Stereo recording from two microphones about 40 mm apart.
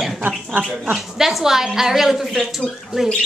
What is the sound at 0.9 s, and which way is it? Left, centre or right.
Speech, centre.